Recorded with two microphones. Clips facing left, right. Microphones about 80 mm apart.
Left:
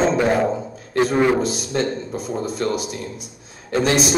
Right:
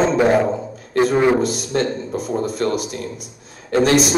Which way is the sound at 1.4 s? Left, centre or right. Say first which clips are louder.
Right 2 dB; right.